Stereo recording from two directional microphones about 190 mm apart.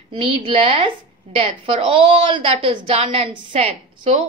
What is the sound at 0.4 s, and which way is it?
Speech, 30° right (ahead or behind).